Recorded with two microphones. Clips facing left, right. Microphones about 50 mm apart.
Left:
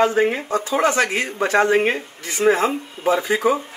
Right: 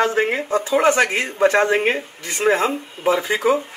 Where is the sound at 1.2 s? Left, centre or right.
Right.